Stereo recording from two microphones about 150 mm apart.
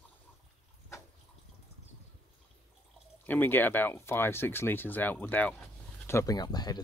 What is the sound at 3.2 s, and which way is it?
Speech, 10° left (ahead or behind).